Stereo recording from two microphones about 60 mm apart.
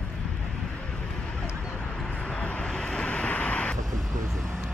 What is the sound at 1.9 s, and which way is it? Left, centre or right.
Vehicle, centre.